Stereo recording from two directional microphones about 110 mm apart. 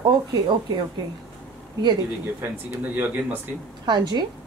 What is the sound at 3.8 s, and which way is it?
Speech, 40° right (ahead or behind).